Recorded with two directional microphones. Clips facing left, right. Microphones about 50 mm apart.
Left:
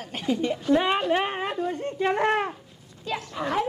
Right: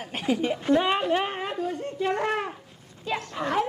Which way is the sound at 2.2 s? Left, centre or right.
Left.